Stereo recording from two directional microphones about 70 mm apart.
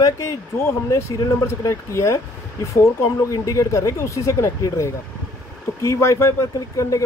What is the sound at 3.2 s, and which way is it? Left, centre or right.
Speech, left.